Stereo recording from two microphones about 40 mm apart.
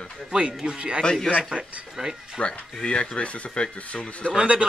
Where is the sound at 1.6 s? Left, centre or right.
Right.